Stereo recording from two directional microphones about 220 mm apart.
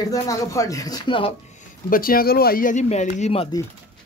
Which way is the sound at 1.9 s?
40° left (ahead or behind).